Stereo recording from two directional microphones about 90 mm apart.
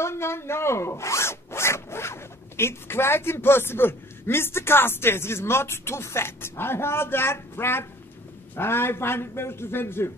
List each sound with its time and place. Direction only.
0.0 s a man's voice: 30° left (ahead or behind)